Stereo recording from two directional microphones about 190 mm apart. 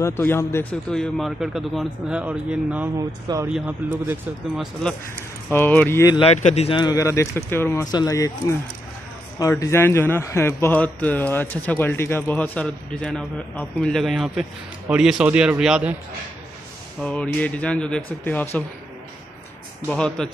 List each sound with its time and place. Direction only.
0.0 s speech: 10° left (ahead or behind); by 2.9 s 5° right (ahead or behind)
3.0 s speech: 20° right (ahead or behind)
3.4 s speech: 5° right (ahead or behind)
5.5 s a man's voice: 10° left (ahead or behind)
6.1 s a man's voice: 35° left (ahead or behind); by 15.9 s 5° right (ahead or behind)
17.0 s a man's voice: 5° left (ahead or behind)
19.9 s speech: 5° left (ahead or behind)